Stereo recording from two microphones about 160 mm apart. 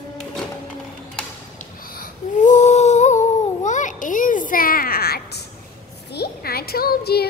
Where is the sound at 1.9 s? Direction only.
60° left (ahead or behind).